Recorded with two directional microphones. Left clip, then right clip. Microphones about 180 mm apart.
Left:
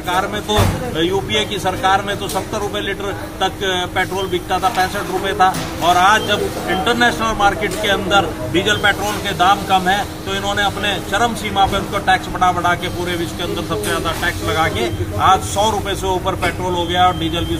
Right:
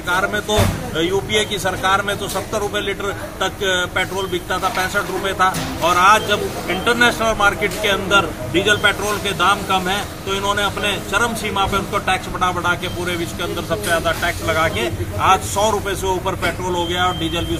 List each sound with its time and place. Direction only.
0.1 s speech: centre (ahead or behind)
5.4 s speech: centre (ahead or behind)
14.0 s speech: 5° left (ahead or behind)